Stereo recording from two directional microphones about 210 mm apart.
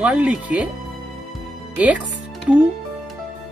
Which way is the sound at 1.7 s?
5° right (ahead or behind).